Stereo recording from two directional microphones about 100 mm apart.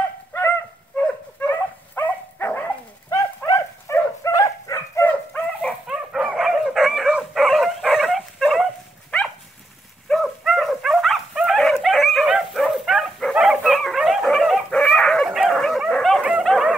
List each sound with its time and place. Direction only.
0.3 s honk: 20° left (ahead or behind)
0.9 s dog: 10° left (ahead or behind)
1.5 s dog: 25° left (ahead or behind)
5.1 s dog: 15° left (ahead or behind)
5.9 s dog: 5° right (ahead or behind)
10.0 s dog: centre (ahead or behind)